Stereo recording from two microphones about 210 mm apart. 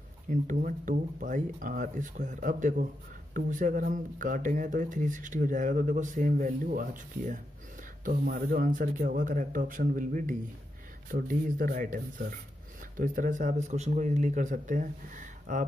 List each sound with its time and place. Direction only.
0.3 s speech: 35° right (ahead or behind)